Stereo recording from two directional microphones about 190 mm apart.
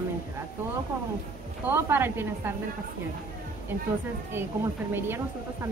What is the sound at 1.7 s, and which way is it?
Speech, 10° right (ahead or behind).